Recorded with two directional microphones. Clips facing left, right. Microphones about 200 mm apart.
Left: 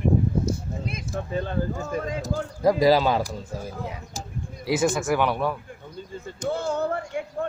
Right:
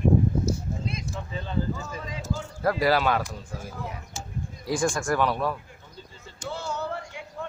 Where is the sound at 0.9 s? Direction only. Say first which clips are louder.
Left 5 dB; 50° left (ahead or behind).